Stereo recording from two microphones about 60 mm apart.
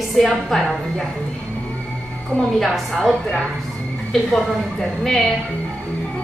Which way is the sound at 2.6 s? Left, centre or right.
Centre.